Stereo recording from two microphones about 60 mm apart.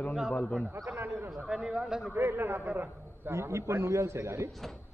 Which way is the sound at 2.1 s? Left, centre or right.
Right.